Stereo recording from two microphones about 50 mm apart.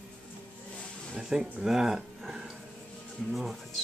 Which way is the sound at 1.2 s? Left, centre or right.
Centre.